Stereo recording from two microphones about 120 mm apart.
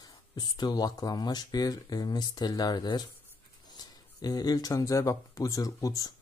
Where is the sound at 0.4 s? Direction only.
35° left (ahead or behind).